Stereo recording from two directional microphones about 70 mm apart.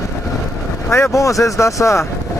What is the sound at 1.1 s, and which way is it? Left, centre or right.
Speech, left.